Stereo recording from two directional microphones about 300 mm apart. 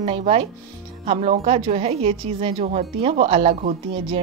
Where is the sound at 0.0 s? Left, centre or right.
Centre.